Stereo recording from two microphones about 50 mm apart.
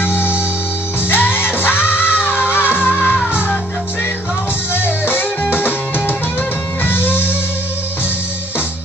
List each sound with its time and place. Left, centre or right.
0.0 s music: left
4.7 s music: left